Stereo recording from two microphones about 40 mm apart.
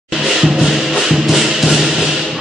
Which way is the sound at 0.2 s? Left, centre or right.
Centre.